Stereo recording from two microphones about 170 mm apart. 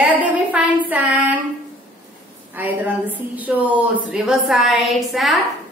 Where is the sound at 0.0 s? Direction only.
10° right (ahead or behind).